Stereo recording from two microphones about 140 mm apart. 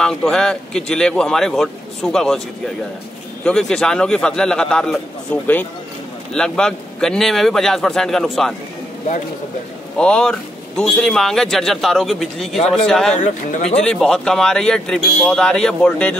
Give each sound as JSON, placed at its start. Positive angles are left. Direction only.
{"t": 0.0, "sound": "speech", "side_deg": 5}
{"t": 3.4, "sound": "speech", "side_deg": 5}
{"t": 9.9, "sound": "speech", "side_deg": 5}
{"t": 13.1, "sound": "speech", "side_deg": 55}
{"t": 13.7, "sound": "speech", "side_deg": 5}